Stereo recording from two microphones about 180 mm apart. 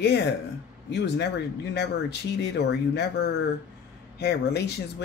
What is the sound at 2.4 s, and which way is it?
Speech, 70° left (ahead or behind).